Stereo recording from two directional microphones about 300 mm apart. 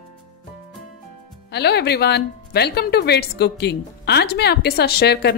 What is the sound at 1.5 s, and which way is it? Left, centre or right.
Speech, left.